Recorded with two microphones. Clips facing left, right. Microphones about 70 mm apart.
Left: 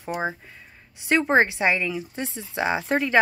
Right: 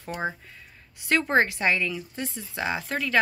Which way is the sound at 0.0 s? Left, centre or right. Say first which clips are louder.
Left 3 dB; centre.